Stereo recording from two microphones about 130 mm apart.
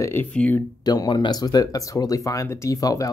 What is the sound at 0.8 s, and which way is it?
Speech, 30° left (ahead or behind).